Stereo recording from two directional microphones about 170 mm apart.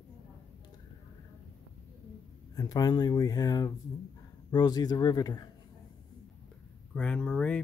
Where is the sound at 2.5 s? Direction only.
20° left (ahead or behind).